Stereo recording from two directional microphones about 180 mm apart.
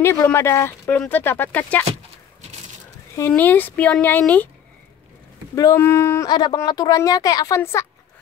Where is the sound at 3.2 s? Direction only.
10° left (ahead or behind).